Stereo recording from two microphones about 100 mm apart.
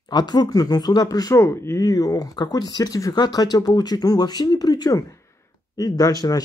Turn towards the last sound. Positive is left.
turn(degrees=40)  # may be behind; listen again after turning